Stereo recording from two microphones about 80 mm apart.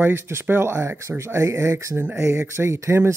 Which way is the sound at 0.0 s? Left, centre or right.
Right.